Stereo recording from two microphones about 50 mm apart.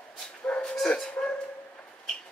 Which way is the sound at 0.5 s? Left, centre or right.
Centre.